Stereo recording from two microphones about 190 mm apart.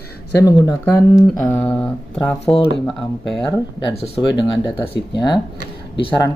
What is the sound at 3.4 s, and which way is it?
Speech, 20° left (ahead or behind).